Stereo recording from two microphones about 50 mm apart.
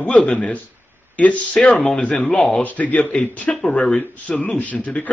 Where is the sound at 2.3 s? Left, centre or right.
Centre.